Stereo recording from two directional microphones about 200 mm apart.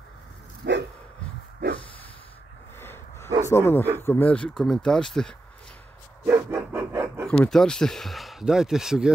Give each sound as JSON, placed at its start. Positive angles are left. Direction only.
{"t": 0.6, "sound": "dog", "side_deg": -60}
{"t": 2.8, "sound": "a sound", "side_deg": 10}
{"t": 3.4, "sound": "speech", "side_deg": 10}
{"t": 6.2, "sound": "dog", "side_deg": -10}
{"t": 7.2, "sound": "speech", "side_deg": 5}